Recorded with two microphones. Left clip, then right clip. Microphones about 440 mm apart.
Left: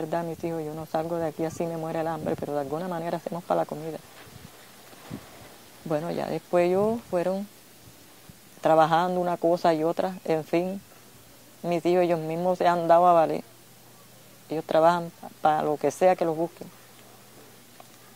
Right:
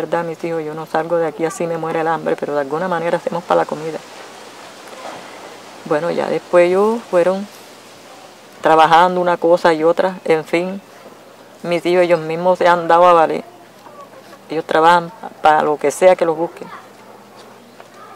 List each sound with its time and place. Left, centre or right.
0.1 s speech: left
5.9 s speech: left
8.5 s speech: left
11.6 s speech: left
14.5 s speech: left